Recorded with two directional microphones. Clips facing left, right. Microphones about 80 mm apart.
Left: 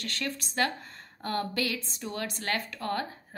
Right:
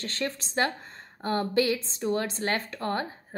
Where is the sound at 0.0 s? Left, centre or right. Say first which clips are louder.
Right 3 dB; right.